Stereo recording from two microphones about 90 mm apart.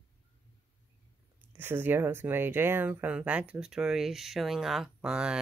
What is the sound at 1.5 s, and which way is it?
Speech, 25° right (ahead or behind).